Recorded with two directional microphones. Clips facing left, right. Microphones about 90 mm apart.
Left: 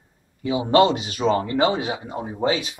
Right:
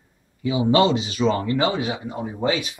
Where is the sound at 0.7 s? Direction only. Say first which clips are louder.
Left 2 dB; 50° left (ahead or behind).